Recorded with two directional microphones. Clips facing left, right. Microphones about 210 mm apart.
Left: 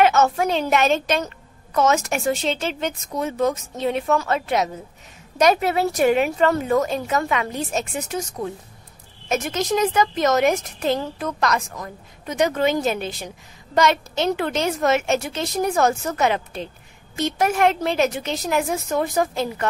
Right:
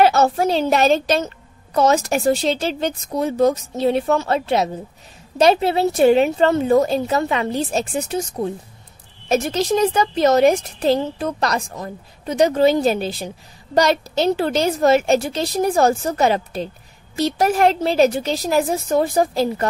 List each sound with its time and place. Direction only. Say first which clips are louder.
0.0 s a woman's voice: right 2 dB; 35° right (ahead or behind)